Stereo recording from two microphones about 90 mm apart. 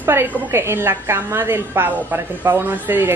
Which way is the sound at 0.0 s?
25° right (ahead or behind).